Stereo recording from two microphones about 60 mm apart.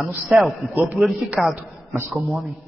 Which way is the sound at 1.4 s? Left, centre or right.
Centre.